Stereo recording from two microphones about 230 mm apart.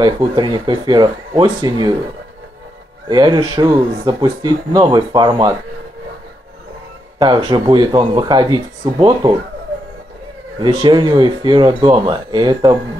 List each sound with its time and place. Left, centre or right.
0.0 s speech: centre
3.1 s speech: centre
7.2 s speech: centre
10.6 s speech: centre